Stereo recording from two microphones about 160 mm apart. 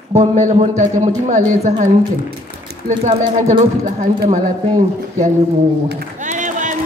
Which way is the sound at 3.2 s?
30° right (ahead or behind).